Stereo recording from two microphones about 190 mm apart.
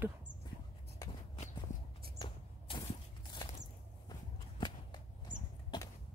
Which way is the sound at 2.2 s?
25° left (ahead or behind).